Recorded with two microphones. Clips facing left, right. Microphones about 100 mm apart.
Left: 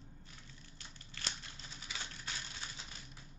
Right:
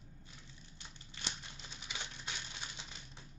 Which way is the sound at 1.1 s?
20° right (ahead or behind).